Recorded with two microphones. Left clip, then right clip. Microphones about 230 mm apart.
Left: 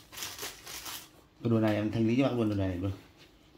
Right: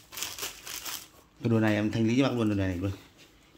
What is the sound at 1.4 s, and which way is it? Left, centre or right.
Speech, right.